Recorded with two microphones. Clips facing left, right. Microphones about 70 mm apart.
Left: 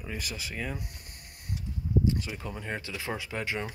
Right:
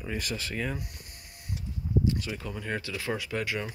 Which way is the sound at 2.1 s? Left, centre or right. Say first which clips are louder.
Right 1 dB; left.